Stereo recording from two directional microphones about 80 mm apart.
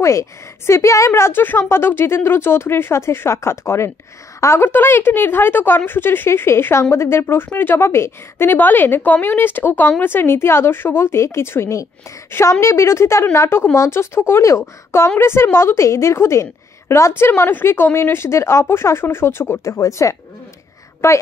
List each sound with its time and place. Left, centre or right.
0.0 s a woman's voice: left
19.6 s a woman's voice: left